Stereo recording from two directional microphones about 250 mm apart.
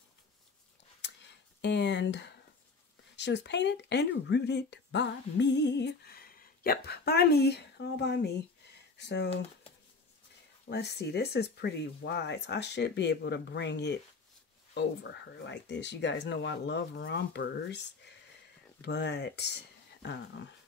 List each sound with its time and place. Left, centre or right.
1.6 s speech: left
10.7 s speech: left
15.4 s speech: left